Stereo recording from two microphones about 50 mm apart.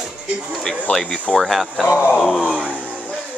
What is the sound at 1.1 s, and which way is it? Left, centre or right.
Speech, left.